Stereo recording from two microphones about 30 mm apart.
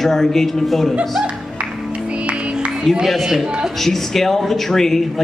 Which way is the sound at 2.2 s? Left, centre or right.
Right.